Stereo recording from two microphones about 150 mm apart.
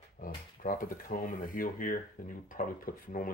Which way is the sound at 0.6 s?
65° left (ahead or behind).